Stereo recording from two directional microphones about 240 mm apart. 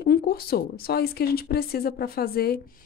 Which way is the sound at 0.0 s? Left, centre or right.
Left.